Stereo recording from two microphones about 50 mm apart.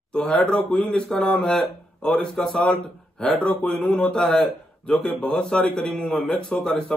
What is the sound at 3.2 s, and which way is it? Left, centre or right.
A man's voice, left.